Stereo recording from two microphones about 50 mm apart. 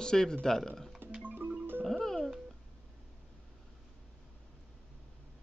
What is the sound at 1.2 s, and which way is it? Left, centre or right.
Music, right.